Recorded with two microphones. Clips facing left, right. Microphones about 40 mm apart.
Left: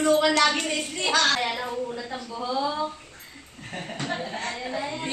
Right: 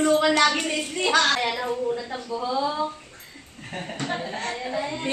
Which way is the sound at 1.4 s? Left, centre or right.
Centre.